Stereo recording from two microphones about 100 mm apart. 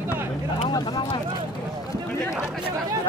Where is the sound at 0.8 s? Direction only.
55° left (ahead or behind).